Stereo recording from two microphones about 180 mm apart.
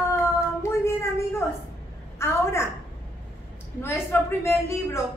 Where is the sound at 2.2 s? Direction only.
15° left (ahead or behind).